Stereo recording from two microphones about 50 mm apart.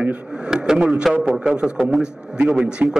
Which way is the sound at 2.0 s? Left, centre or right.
Centre.